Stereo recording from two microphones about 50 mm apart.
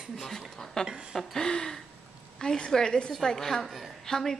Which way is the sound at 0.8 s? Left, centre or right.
Centre.